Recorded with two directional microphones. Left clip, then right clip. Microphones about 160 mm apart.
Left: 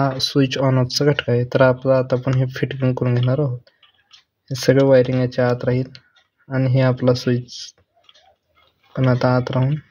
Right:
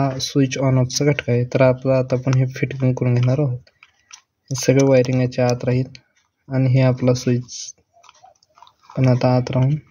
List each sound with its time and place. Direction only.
0.0 s speech: 20° right (ahead or behind)
8.9 s speech: 30° right (ahead or behind)